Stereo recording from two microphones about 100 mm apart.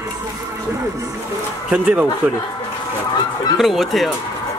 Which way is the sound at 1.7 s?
10° right (ahead or behind).